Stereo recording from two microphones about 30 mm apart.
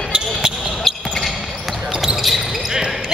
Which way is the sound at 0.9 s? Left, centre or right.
Centre.